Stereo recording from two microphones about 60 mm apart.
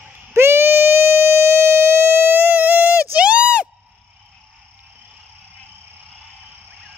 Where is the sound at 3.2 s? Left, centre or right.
Centre.